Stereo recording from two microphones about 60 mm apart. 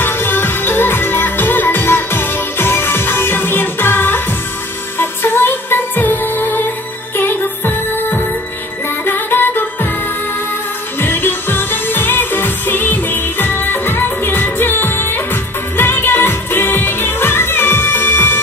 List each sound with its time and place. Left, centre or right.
0.0 s music: left
11.0 s music of asia: left
15.8 s music: left